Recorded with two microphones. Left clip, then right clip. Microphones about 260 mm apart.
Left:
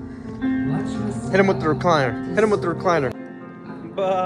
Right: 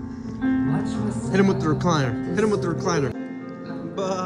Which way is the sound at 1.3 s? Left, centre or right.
Centre.